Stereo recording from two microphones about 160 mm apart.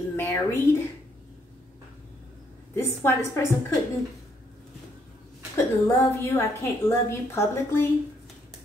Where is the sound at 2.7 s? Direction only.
15° left (ahead or behind).